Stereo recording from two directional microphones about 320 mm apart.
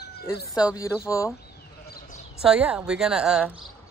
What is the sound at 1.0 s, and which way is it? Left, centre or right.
Speech, centre.